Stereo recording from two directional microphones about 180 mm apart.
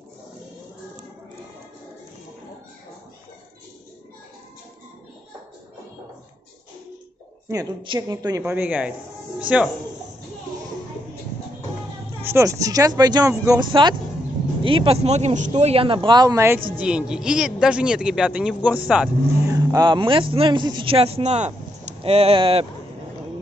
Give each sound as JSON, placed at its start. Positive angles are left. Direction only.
{"t": 7.4, "sound": "a woman's voice", "side_deg": -20}
{"t": 12.2, "sound": "speech", "side_deg": -15}
{"t": 19.5, "sound": "speech", "side_deg": -20}